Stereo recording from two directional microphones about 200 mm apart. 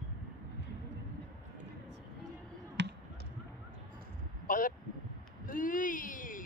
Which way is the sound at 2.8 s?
60° right (ahead or behind).